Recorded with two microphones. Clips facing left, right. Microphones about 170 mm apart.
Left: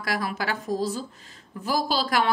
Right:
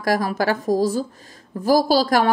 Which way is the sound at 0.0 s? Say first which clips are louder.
Right 8 dB; 40° right (ahead or behind).